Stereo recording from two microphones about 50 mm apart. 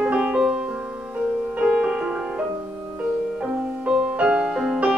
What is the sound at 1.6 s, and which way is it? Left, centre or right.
Music, right.